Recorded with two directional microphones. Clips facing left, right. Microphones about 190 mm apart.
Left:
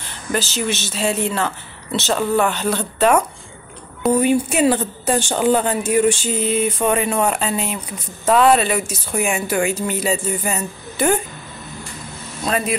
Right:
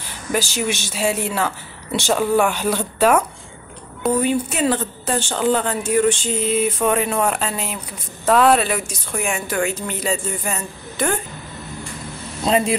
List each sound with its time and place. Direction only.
0.0 s speech: 10° right (ahead or behind)
4.2 s speech: 10° left (ahead or behind)
12.4 s speech: 20° right (ahead or behind)